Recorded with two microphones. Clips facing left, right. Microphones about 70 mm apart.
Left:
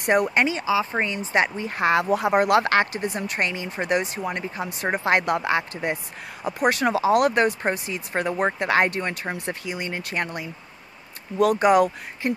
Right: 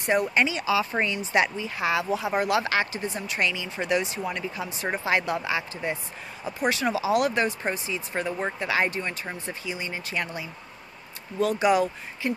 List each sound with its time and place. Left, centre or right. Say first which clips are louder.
0.0 s speech: left 3 dB; left
0.7 s speech: left 2 dB; left